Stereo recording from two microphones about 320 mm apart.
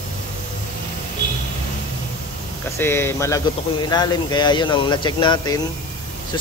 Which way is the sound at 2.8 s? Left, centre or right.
Centre.